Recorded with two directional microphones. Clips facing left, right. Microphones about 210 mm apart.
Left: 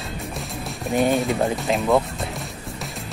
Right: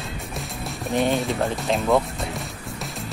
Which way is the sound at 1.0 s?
Centre (ahead or behind).